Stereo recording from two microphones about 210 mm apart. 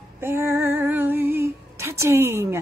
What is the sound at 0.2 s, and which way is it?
Female singing, 10° right (ahead or behind).